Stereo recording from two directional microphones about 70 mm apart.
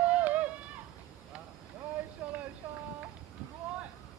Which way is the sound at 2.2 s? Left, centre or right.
Right.